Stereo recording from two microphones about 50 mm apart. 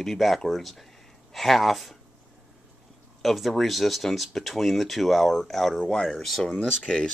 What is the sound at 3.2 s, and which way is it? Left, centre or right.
Speech, centre.